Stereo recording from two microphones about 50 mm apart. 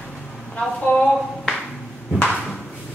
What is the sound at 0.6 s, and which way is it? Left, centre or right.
Speech, centre.